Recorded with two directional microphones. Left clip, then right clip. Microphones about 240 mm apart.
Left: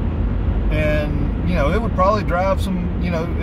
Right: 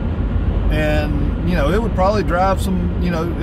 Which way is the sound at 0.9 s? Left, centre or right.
Centre.